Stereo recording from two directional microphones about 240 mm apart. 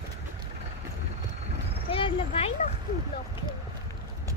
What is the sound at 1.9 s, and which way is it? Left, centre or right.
Vehicle, left.